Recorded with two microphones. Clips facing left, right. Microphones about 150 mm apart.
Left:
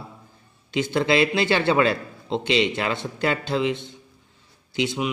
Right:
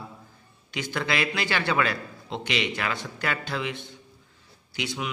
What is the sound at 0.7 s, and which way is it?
A man's voice, 25° left (ahead or behind).